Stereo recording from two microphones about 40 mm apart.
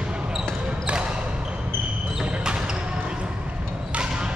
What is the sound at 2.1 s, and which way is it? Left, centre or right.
Basketball bounce, right.